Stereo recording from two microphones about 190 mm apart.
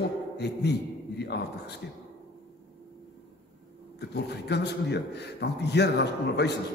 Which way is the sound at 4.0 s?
60° left (ahead or behind).